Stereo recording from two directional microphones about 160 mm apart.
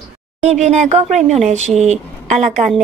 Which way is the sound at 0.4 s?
45° right (ahead or behind).